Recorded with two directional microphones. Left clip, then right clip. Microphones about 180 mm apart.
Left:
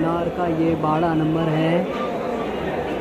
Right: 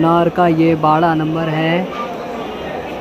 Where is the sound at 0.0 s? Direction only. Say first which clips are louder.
Right 9 dB; 30° right (ahead or behind).